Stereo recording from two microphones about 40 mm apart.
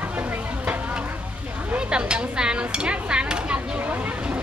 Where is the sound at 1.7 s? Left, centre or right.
Right.